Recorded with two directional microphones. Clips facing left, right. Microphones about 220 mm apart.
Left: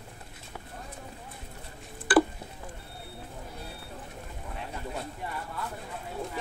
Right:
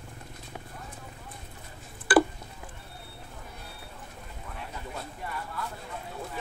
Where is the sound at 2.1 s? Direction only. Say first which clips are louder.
Even; centre (ahead or behind).